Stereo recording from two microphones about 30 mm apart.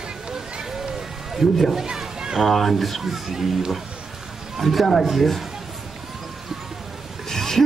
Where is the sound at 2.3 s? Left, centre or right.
Centre.